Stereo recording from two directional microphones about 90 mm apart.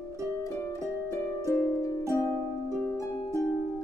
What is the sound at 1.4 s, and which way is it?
Harp, 40° left (ahead or behind).